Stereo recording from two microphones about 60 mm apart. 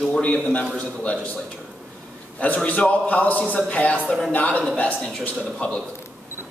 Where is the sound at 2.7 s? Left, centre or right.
Left.